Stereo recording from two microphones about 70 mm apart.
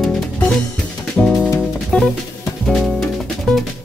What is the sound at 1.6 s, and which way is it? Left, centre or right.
Music, centre.